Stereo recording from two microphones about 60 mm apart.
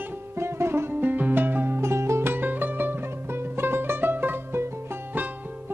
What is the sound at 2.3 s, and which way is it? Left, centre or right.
Music, right.